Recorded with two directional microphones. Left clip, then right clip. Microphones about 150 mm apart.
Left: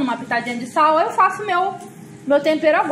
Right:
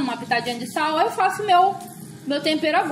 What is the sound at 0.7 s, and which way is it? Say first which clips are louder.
A woman's voice: left 6 dB; 20° left (ahead or behind).